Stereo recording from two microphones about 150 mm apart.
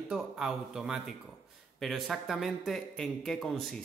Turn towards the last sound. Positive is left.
turn(degrees=0)  # may be behind; listen again after turning